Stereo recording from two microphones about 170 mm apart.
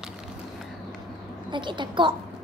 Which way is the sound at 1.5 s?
25° right (ahead or behind).